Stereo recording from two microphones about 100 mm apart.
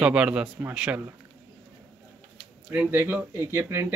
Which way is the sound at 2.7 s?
20° right (ahead or behind).